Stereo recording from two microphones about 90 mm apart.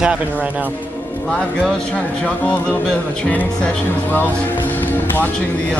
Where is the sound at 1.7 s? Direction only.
5° left (ahead or behind).